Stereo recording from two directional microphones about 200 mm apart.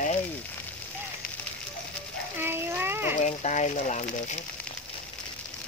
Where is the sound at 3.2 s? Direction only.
35° left (ahead or behind).